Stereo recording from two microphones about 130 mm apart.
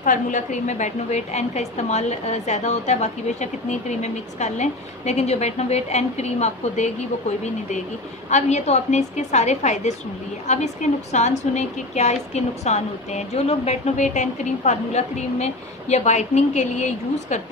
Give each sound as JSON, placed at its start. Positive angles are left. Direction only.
{"t": 0.0, "sound": "a woman's voice", "side_deg": 80}
{"t": 8.3, "sound": "a woman's voice", "side_deg": 60}